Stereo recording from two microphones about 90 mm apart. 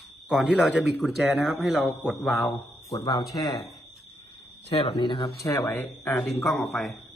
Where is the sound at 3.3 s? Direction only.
45° left (ahead or behind).